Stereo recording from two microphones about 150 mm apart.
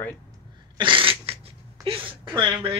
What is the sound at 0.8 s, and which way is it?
Dog, 35° right (ahead or behind).